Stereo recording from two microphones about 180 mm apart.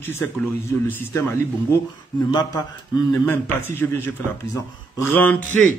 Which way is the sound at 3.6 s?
10° left (ahead or behind).